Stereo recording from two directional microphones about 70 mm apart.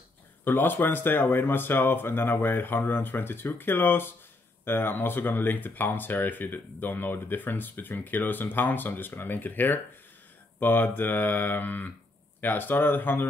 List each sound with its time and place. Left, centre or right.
0.5 s speech: left